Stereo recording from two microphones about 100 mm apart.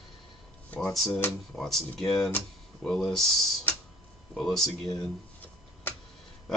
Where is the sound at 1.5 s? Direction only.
5° left (ahead or behind).